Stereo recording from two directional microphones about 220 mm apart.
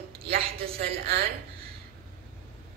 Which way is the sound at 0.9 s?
45° right (ahead or behind).